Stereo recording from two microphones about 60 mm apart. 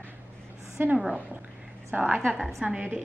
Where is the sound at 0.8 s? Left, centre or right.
Right.